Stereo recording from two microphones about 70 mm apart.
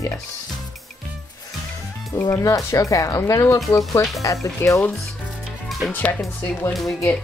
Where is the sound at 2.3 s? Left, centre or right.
Left.